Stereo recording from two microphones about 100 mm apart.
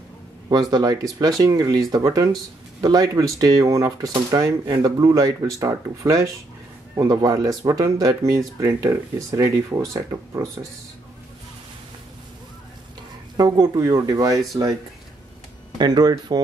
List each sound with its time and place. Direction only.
0.5 s speech: 45° right (ahead or behind)
13.4 s speech: 40° right (ahead or behind)
15.8 s speech: 45° right (ahead or behind)